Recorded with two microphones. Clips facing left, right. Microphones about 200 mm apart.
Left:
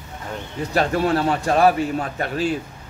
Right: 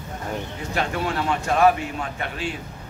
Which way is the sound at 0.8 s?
35° left (ahead or behind).